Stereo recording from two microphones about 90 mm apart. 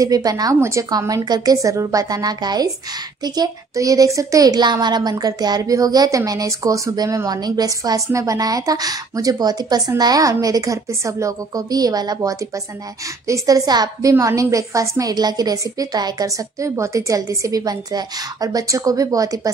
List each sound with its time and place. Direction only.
0.0 s speech: 45° right (ahead or behind)
0.6 s a woman's voice: 30° right (ahead or behind)
0.8 s a woman's voice: 45° right (ahead or behind)